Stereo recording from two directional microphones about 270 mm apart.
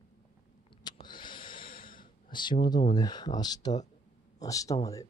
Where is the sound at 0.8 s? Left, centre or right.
Centre.